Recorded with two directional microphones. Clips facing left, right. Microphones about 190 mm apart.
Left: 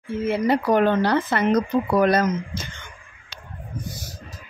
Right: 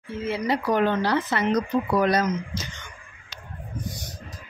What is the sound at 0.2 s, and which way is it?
Speech, 55° left (ahead or behind).